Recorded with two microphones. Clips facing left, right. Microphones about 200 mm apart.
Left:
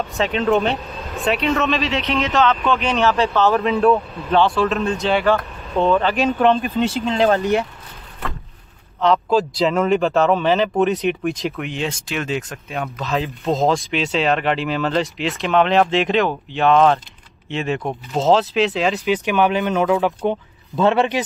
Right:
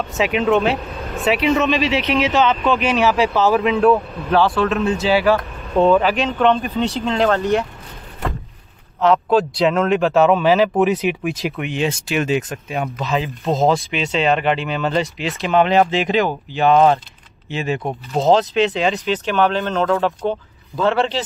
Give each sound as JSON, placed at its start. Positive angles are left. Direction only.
{"t": 0.2, "sound": "speech", "side_deg": -10}
{"t": 2.0, "sound": "speech", "side_deg": -15}
{"t": 7.2, "sound": "speech", "side_deg": 15}
{"t": 9.0, "sound": "speech", "side_deg": 0}
{"t": 19.1, "sound": "speech", "side_deg": 15}